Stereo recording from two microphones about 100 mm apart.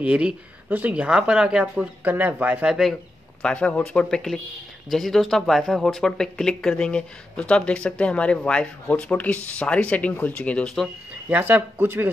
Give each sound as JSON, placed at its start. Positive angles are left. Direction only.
{"t": 0.0, "sound": "speech", "side_deg": -10}
{"t": 2.7, "sound": "speech", "side_deg": 0}
{"t": 3.4, "sound": "speech", "side_deg": 10}
{"t": 11.2, "sound": "speech", "side_deg": -15}